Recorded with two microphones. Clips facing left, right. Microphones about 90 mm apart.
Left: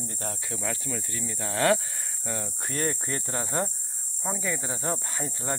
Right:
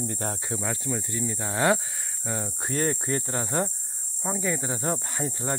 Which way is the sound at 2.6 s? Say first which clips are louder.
Right 4 dB; 25° right (ahead or behind).